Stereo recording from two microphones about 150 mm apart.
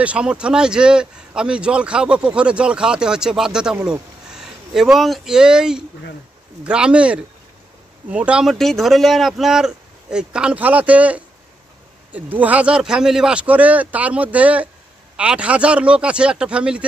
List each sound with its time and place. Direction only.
0.0 s a man's voice: 10° right (ahead or behind)